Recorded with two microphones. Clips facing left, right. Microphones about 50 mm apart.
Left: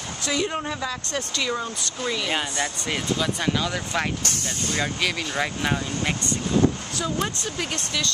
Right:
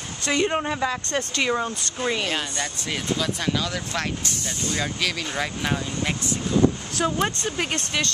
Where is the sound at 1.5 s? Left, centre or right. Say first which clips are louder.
Right 3 dB; right.